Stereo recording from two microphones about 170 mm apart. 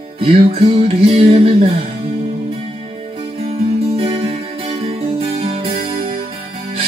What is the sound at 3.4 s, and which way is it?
Music, 35° right (ahead or behind).